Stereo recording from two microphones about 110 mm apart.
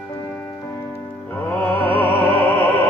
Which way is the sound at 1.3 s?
20° left (ahead or behind).